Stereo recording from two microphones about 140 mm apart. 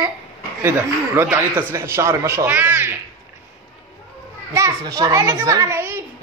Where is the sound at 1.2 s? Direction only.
15° right (ahead or behind).